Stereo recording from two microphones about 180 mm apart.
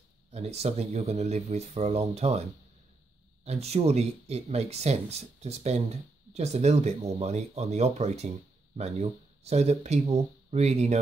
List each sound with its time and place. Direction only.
0.3 s speech: 35° right (ahead or behind)
3.4 s speech: 35° right (ahead or behind)